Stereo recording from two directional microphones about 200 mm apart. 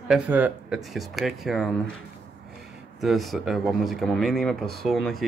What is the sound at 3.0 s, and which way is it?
Speech, centre (ahead or behind).